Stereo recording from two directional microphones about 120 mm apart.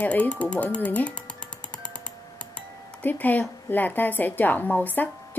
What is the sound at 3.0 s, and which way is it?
A woman's voice, 15° left (ahead or behind).